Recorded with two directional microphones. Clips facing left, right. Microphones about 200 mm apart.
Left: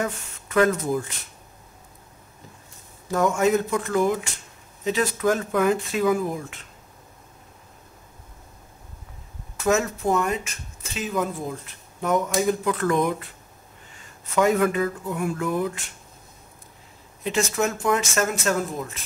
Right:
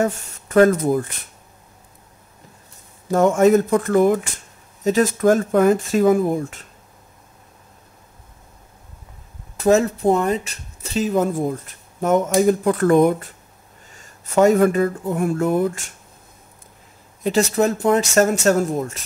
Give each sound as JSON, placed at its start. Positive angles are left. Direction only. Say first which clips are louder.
{"t": 0.0, "sound": "speech", "louder": "right 7 dB", "side_deg": -45}
{"t": 3.1, "sound": "speech", "louder": "right 6 dB", "side_deg": -50}
{"t": 9.6, "sound": "speech", "louder": "right 6 dB", "side_deg": -35}
{"t": 17.2, "sound": "speech", "louder": "right 6 dB", "side_deg": -40}